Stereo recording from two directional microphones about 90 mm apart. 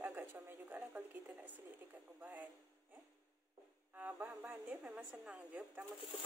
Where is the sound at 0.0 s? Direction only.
25° right (ahead or behind).